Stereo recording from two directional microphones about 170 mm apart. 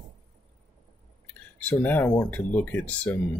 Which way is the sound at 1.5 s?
10° left (ahead or behind).